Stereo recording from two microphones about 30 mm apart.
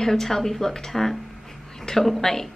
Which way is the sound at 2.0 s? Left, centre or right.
Centre.